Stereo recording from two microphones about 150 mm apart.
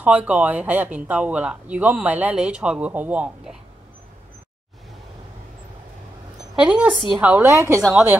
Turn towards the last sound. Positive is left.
turn(degrees=-20)  # may be behind; listen again after turning